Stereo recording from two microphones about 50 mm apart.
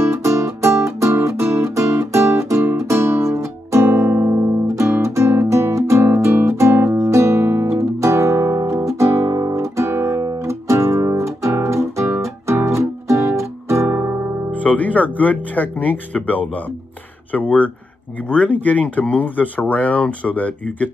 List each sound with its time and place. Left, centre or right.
0.0 s music: right
3.8 s guitar: right
4.7 s music: right
7.6 s music: right
13.8 s music: right
14.5 s speech: left